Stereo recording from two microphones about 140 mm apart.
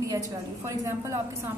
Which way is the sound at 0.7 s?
20° right (ahead or behind).